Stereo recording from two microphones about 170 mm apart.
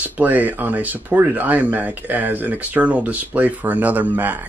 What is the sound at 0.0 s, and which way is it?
Speech, 10° right (ahead or behind).